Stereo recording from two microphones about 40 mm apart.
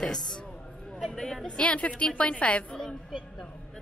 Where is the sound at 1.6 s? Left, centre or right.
Left.